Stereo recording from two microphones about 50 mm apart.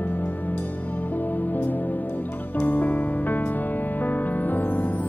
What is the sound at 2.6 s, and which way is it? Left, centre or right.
Music, left.